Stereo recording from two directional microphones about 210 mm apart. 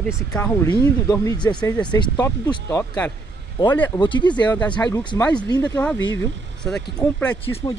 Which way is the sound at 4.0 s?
20° left (ahead or behind).